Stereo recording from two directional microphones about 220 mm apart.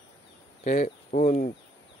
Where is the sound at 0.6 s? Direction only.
35° left (ahead or behind).